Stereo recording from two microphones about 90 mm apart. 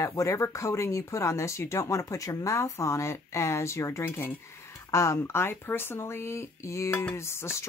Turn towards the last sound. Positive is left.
turn(degrees=30)  # may be behind; listen again after turning